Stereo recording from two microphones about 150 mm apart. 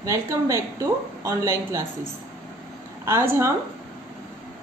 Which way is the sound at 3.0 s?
15° right (ahead or behind).